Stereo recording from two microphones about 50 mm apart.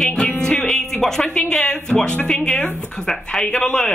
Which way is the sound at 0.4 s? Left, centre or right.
Centre.